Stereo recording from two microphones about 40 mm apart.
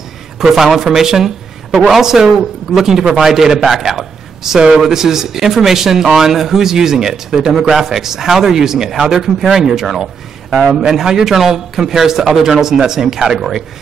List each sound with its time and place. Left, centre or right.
0.4 s a man's voice: centre
10.7 s a man's voice: right
11.0 s speech: centre